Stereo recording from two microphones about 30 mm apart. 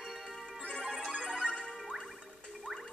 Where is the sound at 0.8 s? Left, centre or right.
Centre.